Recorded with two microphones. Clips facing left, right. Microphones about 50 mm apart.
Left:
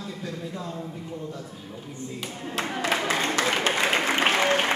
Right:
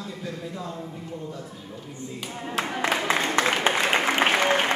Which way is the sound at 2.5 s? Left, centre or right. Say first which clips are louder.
Right 1 dB; centre.